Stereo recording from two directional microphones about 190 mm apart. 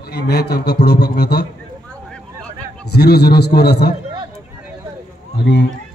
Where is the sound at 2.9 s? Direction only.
55° left (ahead or behind).